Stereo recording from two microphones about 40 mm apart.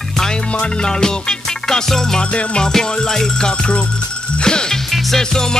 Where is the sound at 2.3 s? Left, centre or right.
Left.